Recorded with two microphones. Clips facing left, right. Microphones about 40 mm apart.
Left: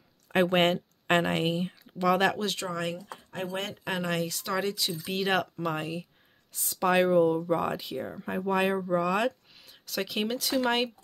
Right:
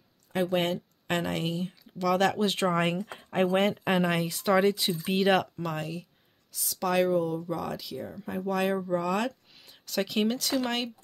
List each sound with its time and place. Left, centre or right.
0.3 s a sound: left
1.1 s speech: left
2.5 s speech: right
3.5 s speech: right
5.1 s speech: centre
5.6 s speech: centre
6.5 s speech: left
6.8 s speech: left
8.7 s speech: centre
9.6 s speech: centre